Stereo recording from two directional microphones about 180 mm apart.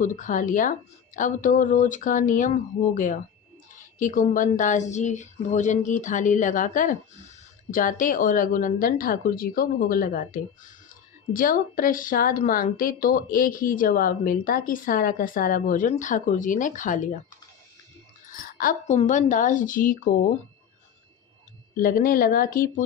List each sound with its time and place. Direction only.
0.0 s a woman's voice: 45° left (ahead or behind)
18.5 s a woman's voice: 50° left (ahead or behind)
21.7 s a woman's voice: 50° left (ahead or behind)